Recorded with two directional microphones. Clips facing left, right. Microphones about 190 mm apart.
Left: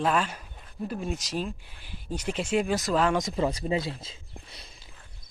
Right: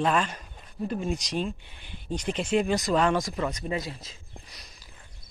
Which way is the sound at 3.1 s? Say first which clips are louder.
Left 2 dB; 25° left (ahead or behind).